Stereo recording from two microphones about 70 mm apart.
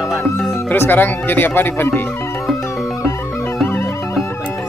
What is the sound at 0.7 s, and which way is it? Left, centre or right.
Speech, left.